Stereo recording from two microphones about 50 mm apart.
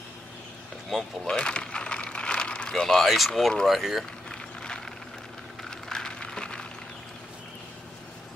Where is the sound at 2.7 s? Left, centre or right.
Centre.